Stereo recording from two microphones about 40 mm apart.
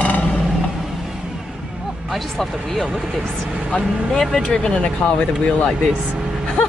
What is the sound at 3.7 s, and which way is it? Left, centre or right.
Speech, centre.